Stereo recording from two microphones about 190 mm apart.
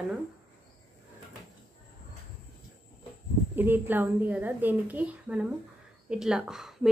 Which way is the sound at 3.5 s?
10° right (ahead or behind).